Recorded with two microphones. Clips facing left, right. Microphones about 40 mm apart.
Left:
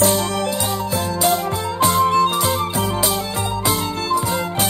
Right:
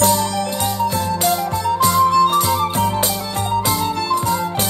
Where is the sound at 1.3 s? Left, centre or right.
Left.